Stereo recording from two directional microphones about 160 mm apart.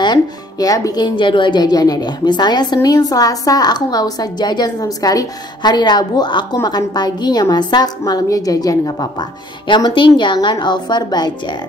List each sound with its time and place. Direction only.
0.0 s speech: 25° left (ahead or behind)